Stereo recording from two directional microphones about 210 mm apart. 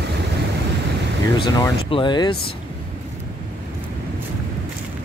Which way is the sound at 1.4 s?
25° left (ahead or behind).